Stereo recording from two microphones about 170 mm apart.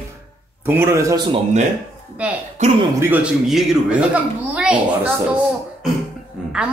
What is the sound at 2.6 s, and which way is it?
Speech, 45° right (ahead or behind).